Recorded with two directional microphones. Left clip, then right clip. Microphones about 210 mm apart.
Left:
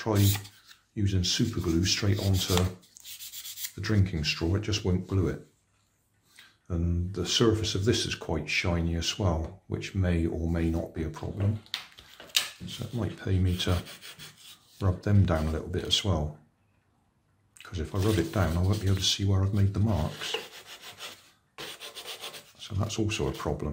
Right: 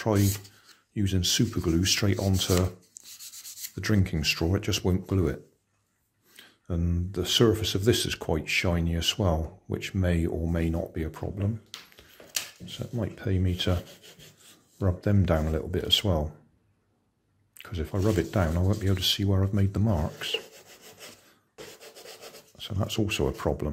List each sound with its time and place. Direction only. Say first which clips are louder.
0.9 s speech: right 3 dB; 45° right (ahead or behind)
12.3 s speech: left 6 dB; 30° right (ahead or behind)
14.8 s speech: right 2 dB; 30° right (ahead or behind)
17.6 s speech: right 2 dB; 35° right (ahead or behind)
21.5 s rub: left 5 dB; centre (ahead or behind)
22.6 s speech: right 2 dB; 35° right (ahead or behind)